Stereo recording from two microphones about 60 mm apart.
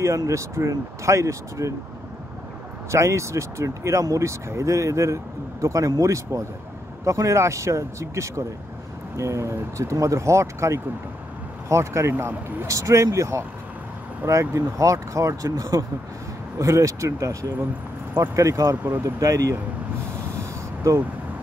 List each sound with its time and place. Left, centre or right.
0.0 s a man's voice: right
2.9 s a man's voice: right
12.6 s a man's voice: right
16.5 s a man's voice: right
20.3 s vehicle: right